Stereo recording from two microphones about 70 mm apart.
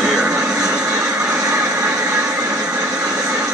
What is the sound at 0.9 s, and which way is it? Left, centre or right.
Vehicle, right.